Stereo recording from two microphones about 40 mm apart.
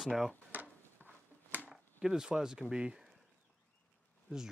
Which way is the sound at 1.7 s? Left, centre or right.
Centre.